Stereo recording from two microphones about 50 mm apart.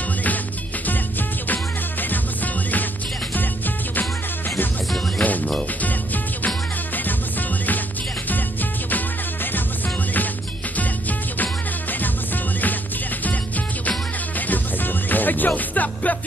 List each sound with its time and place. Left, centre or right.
1.5 s music: left
5.2 s music: left
8.9 s music: left
10.8 s music: left
14.5 s music: left